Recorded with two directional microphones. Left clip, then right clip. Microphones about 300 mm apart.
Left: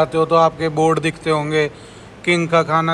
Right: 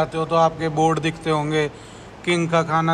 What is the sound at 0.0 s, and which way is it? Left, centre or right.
A man's voice, centre.